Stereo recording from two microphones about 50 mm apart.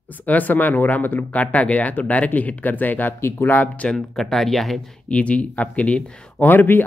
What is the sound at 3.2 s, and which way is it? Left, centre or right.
Speech, left.